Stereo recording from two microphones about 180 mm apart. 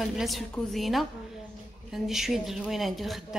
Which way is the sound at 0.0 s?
Centre (ahead or behind).